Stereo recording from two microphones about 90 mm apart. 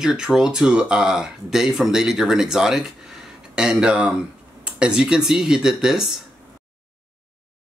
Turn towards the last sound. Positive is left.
turn(degrees=-5)  # may be behind; listen again after turning